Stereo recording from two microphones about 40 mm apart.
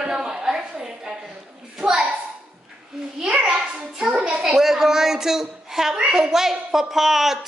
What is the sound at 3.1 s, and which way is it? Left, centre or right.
A child's voice, centre.